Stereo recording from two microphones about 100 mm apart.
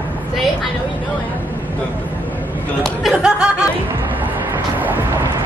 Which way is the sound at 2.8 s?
5° right (ahead or behind).